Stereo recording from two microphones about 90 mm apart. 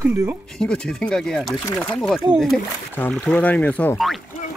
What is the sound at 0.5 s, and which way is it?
Speech, 10° left (ahead or behind).